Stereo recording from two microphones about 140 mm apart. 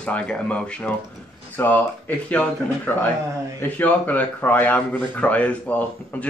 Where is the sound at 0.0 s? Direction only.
10° left (ahead or behind).